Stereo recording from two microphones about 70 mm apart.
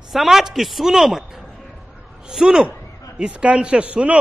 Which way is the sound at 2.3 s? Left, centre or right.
Centre.